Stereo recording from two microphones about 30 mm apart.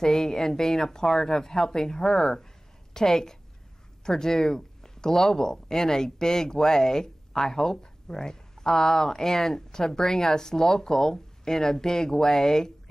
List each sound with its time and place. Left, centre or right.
0.0 s a woman's voice: centre